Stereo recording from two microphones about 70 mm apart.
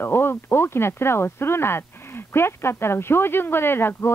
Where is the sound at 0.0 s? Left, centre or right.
Left.